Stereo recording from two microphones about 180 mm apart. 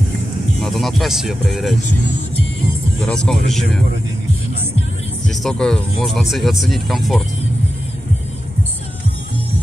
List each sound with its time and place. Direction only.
0.6 s speech: centre (ahead or behind)
3.0 s speech: 5° left (ahead or behind)
5.2 s speech: centre (ahead or behind)